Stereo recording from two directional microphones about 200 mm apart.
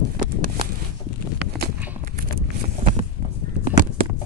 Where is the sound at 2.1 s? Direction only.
45° right (ahead or behind).